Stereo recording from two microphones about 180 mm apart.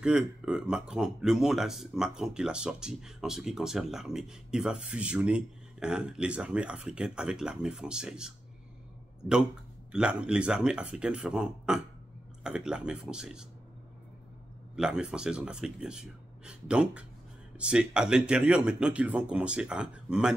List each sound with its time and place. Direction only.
0.0 s speech: 5° right (ahead or behind)
9.9 s speech: 5° right (ahead or behind)
14.8 s speech: 5° right (ahead or behind)